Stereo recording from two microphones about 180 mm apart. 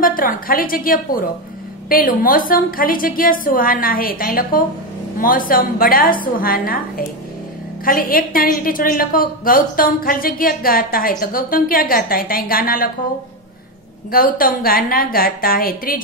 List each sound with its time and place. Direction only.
0.0 s a woman's voice: 50° left (ahead or behind)
14.1 s a woman's voice: 55° left (ahead or behind)